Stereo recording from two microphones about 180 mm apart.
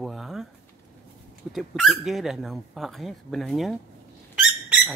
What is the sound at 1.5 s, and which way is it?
Speech, centre (ahead or behind).